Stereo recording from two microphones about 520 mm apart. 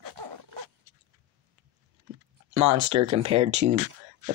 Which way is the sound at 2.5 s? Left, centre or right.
Right.